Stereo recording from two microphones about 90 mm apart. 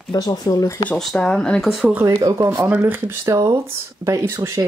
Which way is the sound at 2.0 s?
35° right (ahead or behind).